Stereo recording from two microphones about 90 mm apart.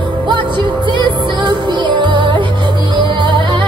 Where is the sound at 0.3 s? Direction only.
60° right (ahead or behind).